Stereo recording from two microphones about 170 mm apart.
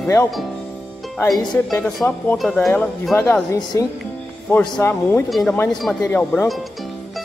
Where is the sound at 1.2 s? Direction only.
25° left (ahead or behind).